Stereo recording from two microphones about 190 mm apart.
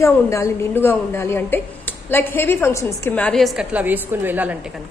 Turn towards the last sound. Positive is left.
turn(degrees=-10)  # may be behind; listen again after turning